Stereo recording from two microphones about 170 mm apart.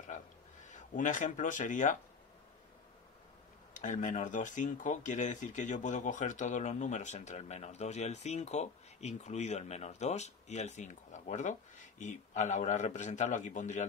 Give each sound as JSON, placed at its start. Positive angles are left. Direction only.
{"t": 0.7, "sound": "speech", "side_deg": 50}
{"t": 3.7, "sound": "speech", "side_deg": 45}